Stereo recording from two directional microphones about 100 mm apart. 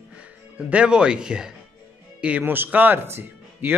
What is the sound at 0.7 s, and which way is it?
A man's voice, 10° right (ahead or behind).